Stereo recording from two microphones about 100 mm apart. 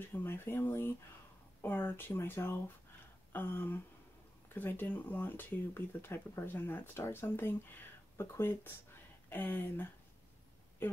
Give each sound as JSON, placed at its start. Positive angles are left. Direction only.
{"t": 0.0, "sound": "speech", "side_deg": 20}